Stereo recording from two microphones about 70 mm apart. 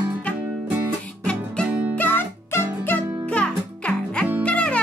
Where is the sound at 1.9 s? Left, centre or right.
Left.